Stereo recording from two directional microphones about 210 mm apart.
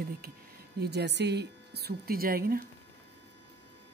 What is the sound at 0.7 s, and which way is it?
Speech, 50° right (ahead or behind).